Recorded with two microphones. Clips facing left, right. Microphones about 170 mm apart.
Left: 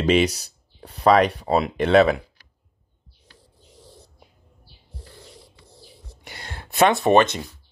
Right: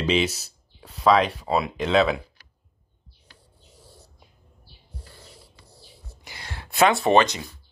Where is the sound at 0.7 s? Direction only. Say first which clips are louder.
Left 2 dB; 60° left (ahead or behind).